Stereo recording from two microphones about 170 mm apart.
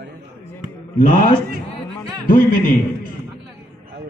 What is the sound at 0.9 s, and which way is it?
A man's voice, 55° left (ahead or behind).